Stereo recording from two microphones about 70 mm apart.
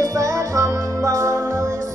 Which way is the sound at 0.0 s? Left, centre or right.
Right.